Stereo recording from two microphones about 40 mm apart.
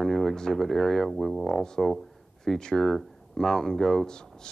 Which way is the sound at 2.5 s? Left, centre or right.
Centre.